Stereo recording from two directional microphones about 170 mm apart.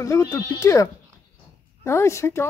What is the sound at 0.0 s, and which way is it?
Speech, 20° left (ahead or behind).